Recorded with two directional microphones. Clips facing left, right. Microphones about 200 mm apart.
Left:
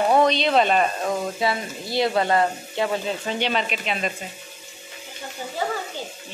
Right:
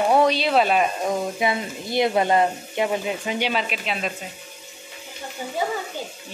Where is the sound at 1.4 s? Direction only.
20° right (ahead or behind); by 4.1 s centre (ahead or behind).